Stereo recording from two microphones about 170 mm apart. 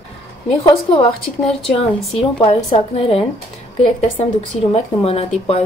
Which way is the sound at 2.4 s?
30° left (ahead or behind).